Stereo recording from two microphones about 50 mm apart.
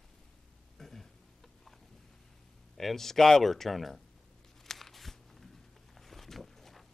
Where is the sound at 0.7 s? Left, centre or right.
Centre.